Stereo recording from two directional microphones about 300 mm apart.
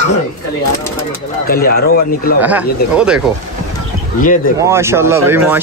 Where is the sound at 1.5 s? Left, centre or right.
Left.